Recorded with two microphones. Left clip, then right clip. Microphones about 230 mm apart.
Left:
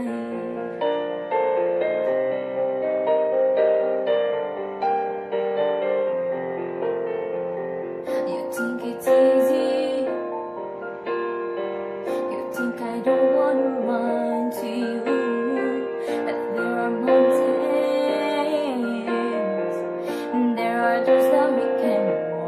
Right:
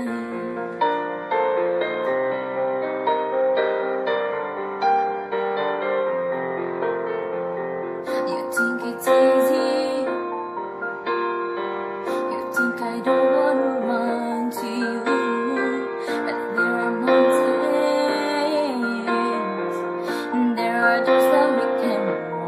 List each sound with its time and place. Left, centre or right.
0.8 s music: centre
5.4 s music: centre
9.0 s music: centre
13.0 s music: centre
15.0 s music: centre
19.0 s music: centre
20.6 s music: centre
21.1 s music: centre